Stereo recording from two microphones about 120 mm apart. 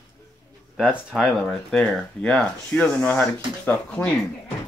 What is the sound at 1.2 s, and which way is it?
Speech, 5° left (ahead or behind).